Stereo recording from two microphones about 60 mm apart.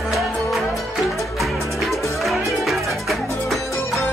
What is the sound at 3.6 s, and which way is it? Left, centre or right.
Music, left.